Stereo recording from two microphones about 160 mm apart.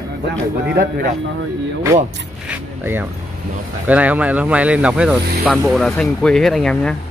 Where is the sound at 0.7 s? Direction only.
70° right (ahead or behind).